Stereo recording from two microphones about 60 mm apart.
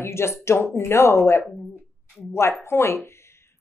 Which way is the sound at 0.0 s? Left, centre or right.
Left.